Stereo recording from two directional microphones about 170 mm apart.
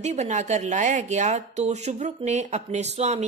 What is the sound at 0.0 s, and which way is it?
Speech, 40° right (ahead or behind).